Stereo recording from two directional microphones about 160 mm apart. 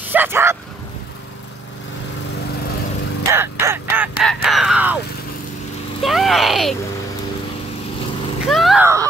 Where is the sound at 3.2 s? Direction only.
15° right (ahead or behind).